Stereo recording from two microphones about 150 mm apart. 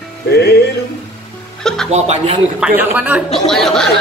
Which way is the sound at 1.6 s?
5° left (ahead or behind).